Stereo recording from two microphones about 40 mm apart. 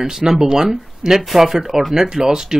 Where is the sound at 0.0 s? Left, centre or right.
Centre.